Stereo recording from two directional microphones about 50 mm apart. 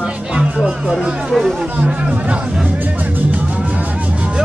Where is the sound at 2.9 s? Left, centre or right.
Right.